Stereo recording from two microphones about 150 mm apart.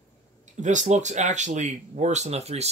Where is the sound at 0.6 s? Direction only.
55° right (ahead or behind).